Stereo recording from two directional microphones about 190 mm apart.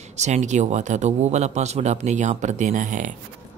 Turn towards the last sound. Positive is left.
turn(degrees=-40)  # may be behind; listen again after turning